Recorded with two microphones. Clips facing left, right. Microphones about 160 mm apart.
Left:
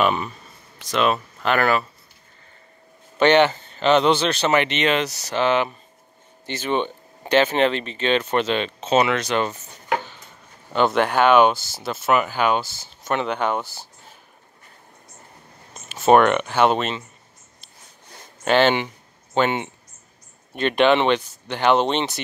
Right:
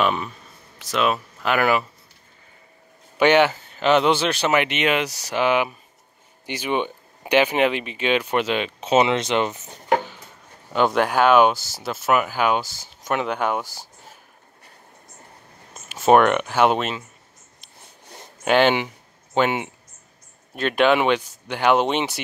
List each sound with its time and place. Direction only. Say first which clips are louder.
0.0 s speech: left 1 dB; centre (ahead or behind)
3.2 s speech: left 1 dB; 10° right (ahead or behind)
8.9 s speech: right 1 dB; 25° right (ahead or behind)
9.9 s chopping: right 3 dB; 10° right (ahead or behind)
10.7 s speech: even; 5° right (ahead or behind)
15.9 s speech: even; 5° right (ahead or behind)
18.4 s speech: even; 10° right (ahead or behind)